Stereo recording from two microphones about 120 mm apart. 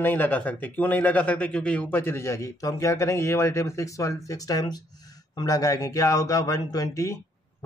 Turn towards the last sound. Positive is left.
turn(degrees=25)  # may be behind; listen again after turning